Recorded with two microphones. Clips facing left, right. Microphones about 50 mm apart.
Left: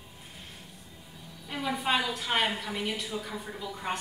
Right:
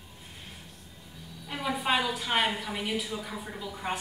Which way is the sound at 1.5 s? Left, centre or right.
Centre.